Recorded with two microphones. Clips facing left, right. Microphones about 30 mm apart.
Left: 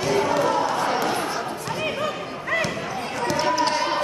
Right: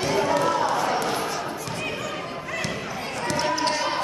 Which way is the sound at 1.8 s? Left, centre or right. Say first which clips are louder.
Left 5 dB; left.